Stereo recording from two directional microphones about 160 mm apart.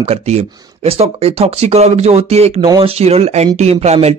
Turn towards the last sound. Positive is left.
turn(degrees=-40)  # may be behind; listen again after turning